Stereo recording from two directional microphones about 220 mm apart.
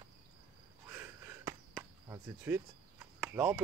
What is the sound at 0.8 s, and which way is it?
Cricket, 10° right (ahead or behind).